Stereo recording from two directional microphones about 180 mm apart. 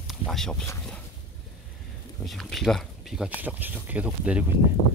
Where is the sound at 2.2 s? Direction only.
Centre (ahead or behind).